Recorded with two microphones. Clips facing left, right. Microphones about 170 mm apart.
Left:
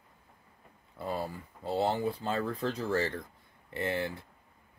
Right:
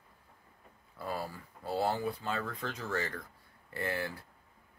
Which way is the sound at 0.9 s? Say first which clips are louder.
Left 3 dB; 20° left (ahead or behind).